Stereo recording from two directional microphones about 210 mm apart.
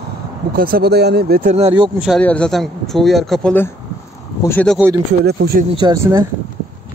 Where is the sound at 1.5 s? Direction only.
25° right (ahead or behind).